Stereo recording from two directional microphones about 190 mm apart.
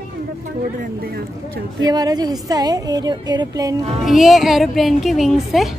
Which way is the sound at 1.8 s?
20° right (ahead or behind).